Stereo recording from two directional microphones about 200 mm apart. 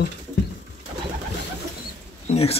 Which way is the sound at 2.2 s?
30° left (ahead or behind).